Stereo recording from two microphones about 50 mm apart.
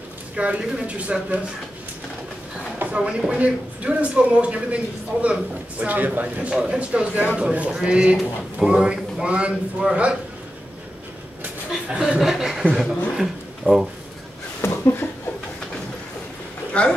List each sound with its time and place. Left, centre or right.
0.4 s a woman's voice: right
2.8 s a woman's voice: right
6.5 s a woman's voice: centre
12.2 s chuckle: centre
12.7 s a sound: centre
14.6 s chuckle: left
16.8 s a sound: left